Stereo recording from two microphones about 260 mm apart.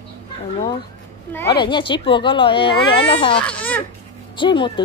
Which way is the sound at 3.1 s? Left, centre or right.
Centre.